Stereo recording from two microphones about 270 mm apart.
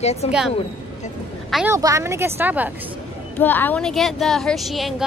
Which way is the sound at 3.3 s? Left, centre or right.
Centre.